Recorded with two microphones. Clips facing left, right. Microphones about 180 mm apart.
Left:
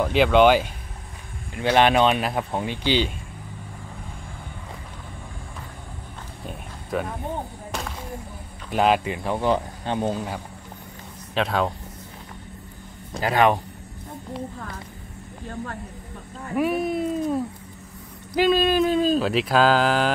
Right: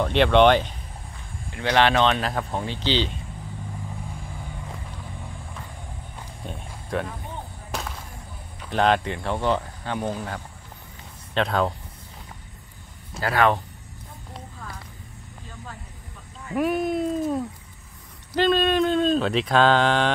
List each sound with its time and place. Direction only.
0.0 s speech: 5° left (ahead or behind)
1.5 s speech: 20° left (ahead or behind)
6.4 s roaring cats: 5° left (ahead or behind)
7.7 s a sound: centre (ahead or behind)
8.6 s speech: 10° left (ahead or behind)
11.3 s speech: centre (ahead or behind)
13.2 s speech: 20° left (ahead or behind)
15.4 s speech: 60° left (ahead or behind)
16.5 s speech: centre (ahead or behind)